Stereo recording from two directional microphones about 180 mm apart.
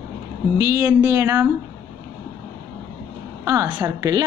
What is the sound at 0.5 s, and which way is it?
Speech, 15° right (ahead or behind).